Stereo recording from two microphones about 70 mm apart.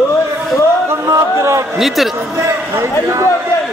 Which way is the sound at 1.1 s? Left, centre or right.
Right.